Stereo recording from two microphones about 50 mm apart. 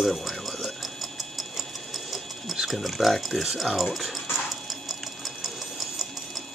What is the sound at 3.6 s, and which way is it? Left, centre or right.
Speech, centre.